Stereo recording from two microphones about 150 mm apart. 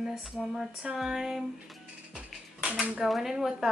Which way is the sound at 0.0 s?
5° right (ahead or behind).